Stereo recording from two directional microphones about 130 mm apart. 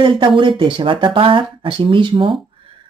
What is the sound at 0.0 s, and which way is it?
Speech, 40° right (ahead or behind).